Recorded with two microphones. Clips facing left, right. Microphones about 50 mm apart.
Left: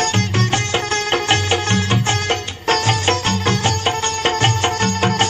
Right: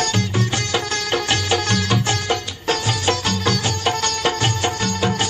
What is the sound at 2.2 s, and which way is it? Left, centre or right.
Music, left.